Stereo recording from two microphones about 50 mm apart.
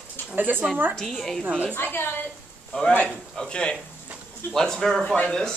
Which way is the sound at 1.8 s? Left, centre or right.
Left.